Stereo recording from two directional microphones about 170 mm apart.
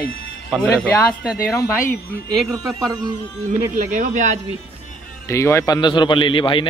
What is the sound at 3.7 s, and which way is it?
Speech, 50° right (ahead or behind).